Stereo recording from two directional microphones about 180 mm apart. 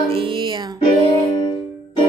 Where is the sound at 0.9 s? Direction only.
35° right (ahead or behind).